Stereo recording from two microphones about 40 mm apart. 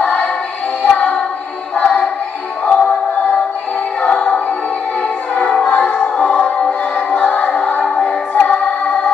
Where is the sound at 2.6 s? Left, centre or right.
Left.